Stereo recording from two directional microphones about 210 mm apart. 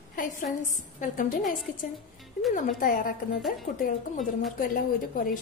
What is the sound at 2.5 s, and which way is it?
Speech, 40° left (ahead or behind).